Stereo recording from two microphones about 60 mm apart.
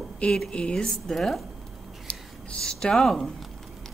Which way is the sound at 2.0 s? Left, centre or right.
Centre.